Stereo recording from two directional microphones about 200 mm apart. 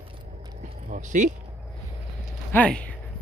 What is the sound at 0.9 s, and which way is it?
Speech, 40° right (ahead or behind).